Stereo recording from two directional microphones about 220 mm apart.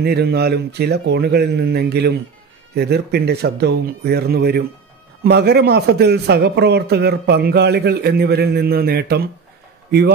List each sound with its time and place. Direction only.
0.0 s a man's voice: 45° right (ahead or behind)